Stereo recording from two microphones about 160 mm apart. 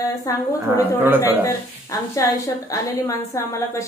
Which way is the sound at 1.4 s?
20° left (ahead or behind).